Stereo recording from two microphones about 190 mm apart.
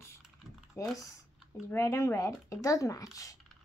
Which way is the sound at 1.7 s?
15° left (ahead or behind).